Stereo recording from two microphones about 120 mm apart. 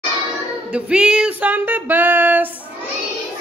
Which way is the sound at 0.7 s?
10° right (ahead or behind).